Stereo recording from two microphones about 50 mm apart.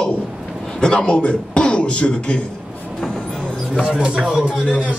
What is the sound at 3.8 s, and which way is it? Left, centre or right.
Speech, centre.